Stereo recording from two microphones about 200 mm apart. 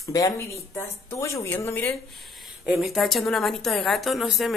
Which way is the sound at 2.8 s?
Centre (ahead or behind).